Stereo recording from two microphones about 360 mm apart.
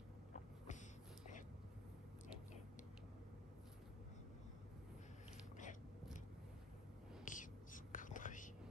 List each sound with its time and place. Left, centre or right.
7.2 s whispering: left